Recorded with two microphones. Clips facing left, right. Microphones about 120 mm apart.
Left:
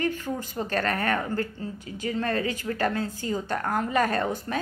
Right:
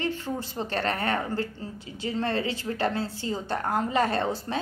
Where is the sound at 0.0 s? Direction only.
25° right (ahead or behind).